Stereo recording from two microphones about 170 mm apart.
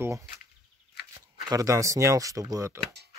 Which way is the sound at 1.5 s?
20° right (ahead or behind).